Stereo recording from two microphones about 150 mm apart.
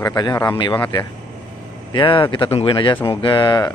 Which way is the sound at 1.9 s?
35° left (ahead or behind).